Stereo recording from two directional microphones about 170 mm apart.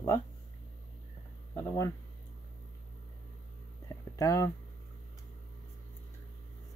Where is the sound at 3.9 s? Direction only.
20° left (ahead or behind).